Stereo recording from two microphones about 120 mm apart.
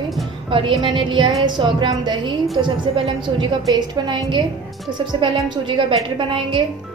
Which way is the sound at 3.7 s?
40° right (ahead or behind).